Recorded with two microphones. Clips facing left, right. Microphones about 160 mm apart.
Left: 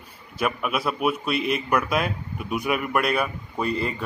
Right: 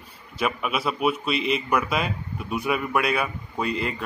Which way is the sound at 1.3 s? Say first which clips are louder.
Even; 50° left (ahead or behind).